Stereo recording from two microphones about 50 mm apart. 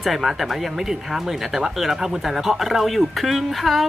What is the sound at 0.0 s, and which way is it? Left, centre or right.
Speech, centre.